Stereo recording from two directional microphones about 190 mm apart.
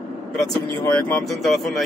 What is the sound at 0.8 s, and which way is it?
Speech, 15° left (ahead or behind).